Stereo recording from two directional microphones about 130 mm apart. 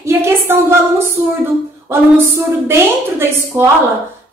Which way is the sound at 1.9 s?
20° right (ahead or behind).